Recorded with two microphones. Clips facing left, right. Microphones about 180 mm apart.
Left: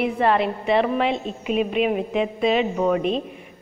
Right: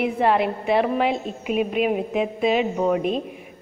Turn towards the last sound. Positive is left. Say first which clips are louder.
# even
turn(degrees=-10)  # may be behind; listen again after turning